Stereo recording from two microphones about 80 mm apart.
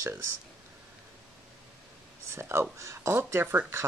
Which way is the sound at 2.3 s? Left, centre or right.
Right.